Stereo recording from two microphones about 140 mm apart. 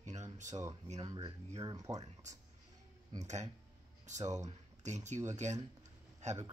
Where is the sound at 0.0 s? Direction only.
60° right (ahead or behind).